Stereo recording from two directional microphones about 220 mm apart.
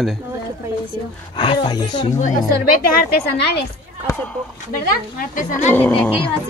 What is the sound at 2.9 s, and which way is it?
Speech, 45° left (ahead or behind).